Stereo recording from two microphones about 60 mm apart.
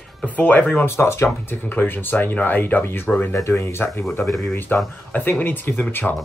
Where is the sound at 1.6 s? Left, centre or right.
Left.